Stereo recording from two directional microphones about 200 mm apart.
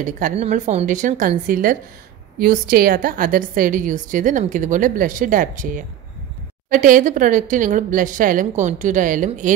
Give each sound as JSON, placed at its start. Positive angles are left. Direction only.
{"t": 0.0, "sound": "a woman's voice", "side_deg": -40}